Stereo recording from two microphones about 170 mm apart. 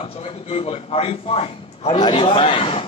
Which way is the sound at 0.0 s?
35° left (ahead or behind).